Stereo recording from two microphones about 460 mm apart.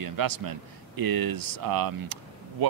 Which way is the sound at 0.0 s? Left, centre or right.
Right.